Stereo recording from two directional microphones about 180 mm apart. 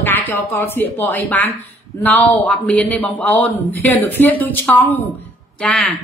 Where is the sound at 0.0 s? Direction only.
10° left (ahead or behind).